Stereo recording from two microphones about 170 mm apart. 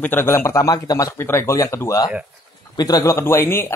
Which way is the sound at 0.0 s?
15° left (ahead or behind).